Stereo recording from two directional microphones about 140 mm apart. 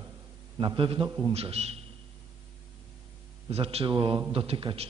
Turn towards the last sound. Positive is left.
turn(degrees=-40)  # may be behind; listen again after turning